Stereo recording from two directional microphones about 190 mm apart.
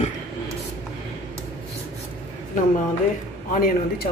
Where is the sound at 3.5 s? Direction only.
50° left (ahead or behind).